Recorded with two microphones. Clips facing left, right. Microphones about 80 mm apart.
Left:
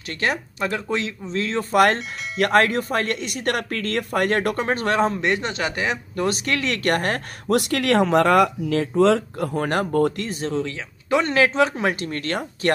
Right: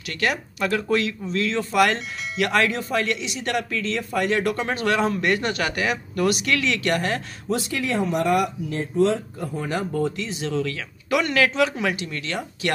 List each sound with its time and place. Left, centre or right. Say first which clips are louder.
0.2 s speech: even; left
1.3 s speech: left 3 dB; left
5.2 s speech: even; left
10.6 s speech: right 1 dB; left